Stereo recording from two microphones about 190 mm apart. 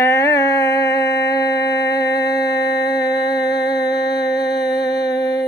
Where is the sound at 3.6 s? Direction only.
60° left (ahead or behind).